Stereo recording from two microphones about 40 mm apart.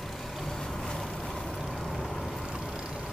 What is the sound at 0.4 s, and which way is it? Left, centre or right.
Vehicle, centre.